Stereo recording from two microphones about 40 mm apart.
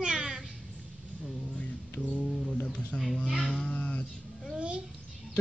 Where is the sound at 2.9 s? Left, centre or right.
Left.